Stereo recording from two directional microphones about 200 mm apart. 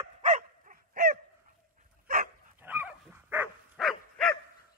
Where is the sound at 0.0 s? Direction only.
30° right (ahead or behind).